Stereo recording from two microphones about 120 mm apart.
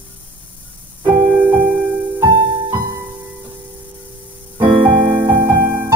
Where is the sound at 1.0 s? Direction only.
35° right (ahead or behind).